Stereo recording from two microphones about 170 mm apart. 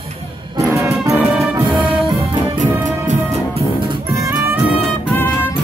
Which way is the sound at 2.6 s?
45° right (ahead or behind).